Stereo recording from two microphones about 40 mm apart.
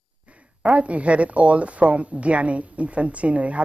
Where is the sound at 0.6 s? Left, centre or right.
Right.